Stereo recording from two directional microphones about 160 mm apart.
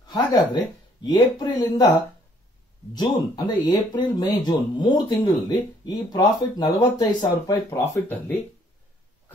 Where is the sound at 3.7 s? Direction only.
30° left (ahead or behind).